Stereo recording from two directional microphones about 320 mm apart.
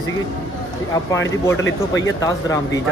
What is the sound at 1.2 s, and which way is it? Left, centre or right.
Speech, left.